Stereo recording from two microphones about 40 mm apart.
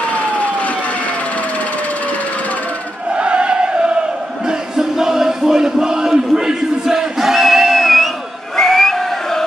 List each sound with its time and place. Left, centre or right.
3.2 s chant: right
4.5 s a sound: centre
8.5 s whistling: centre